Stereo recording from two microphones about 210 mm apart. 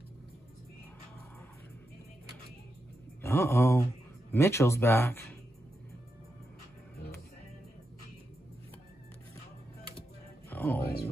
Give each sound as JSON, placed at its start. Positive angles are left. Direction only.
{"t": 3.2, "sound": "speech", "side_deg": 10}
{"t": 10.5, "sound": "music", "side_deg": 10}
{"t": 10.8, "sound": "a sound", "side_deg": 50}